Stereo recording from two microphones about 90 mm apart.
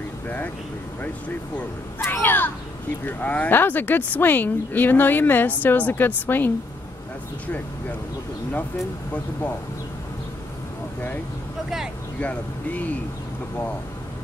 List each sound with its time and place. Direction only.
2.0 s a child's voice: 25° left (ahead or behind)
12.2 s speech: 15° left (ahead or behind)